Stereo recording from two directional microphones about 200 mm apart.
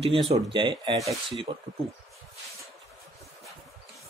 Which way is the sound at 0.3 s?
25° right (ahead or behind).